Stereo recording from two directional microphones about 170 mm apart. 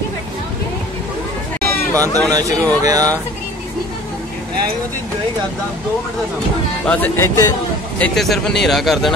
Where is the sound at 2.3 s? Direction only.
20° right (ahead or behind).